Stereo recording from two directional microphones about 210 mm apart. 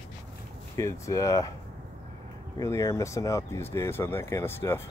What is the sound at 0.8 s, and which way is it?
Speech, 15° left (ahead or behind).